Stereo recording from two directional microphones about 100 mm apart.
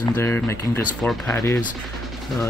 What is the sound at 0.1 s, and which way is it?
Speech, 25° left (ahead or behind).